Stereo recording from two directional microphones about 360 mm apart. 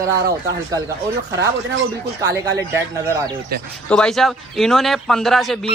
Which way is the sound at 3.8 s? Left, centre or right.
Centre.